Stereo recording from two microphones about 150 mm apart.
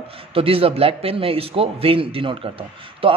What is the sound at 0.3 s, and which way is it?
Speech, 40° right (ahead or behind).